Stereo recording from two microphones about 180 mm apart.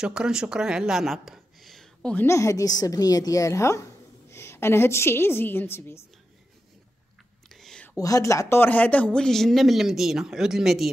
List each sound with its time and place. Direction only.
0.0 s a woman's voice: 5° right (ahead or behind); by 5.9 s 15° left (ahead or behind)
7.4 s a sound: centre (ahead or behind)
8.0 s speech: 20° left (ahead or behind); by 10.9 s centre (ahead or behind)